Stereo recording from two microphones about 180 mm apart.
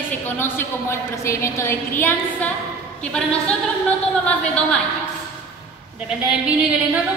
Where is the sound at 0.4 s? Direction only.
15° left (ahead or behind).